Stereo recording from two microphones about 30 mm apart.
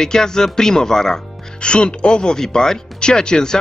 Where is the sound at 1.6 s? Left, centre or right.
Left.